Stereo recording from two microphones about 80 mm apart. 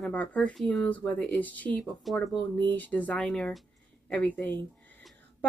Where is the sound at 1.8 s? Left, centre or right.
Centre.